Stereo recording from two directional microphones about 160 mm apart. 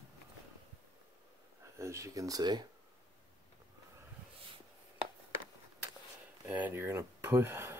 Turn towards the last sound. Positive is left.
turn(degrees=-15)  # may be behind; listen again after turning